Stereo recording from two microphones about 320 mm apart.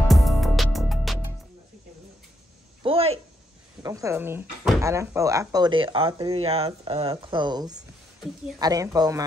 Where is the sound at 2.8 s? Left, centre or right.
Centre.